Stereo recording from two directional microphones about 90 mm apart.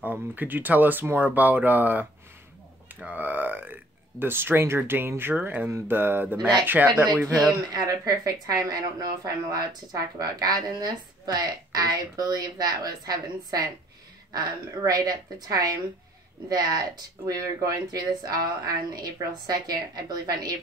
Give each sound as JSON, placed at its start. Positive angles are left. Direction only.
{"t": 0.0, "sound": "speech", "side_deg": -20}
{"t": 7.7, "sound": "speech", "side_deg": -40}